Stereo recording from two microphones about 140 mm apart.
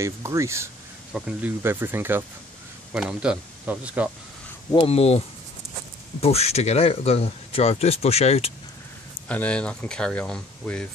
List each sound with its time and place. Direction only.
0.0 s speech: 20° right (ahead or behind)
1.1 s speech: 10° right (ahead or behind)
2.9 s speech: 5° right (ahead or behind)
4.7 s speech: 45° left (ahead or behind)
6.2 s speech: 45° left (ahead or behind)
9.3 s speech: 10° left (ahead or behind)